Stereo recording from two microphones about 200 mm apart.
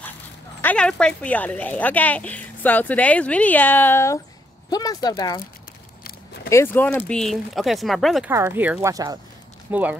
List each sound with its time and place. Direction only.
0.6 s speech: 5° left (ahead or behind)
6.5 s speech: 10° left (ahead or behind)
8.3 s speech: 10° right (ahead or behind)